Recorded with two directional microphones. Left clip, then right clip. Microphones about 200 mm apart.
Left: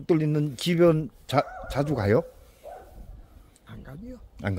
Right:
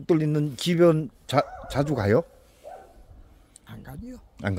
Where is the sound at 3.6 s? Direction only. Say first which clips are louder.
Right 1 dB; 60° right (ahead or behind).